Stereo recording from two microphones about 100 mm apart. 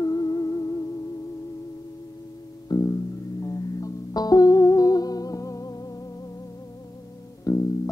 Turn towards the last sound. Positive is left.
turn(degrees=35)  # may be behind; listen again after turning